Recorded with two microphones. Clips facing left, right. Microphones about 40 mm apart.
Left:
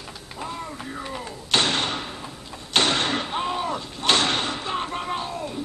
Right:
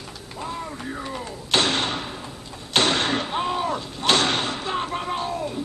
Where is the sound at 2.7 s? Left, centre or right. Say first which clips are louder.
Right 1 dB; centre.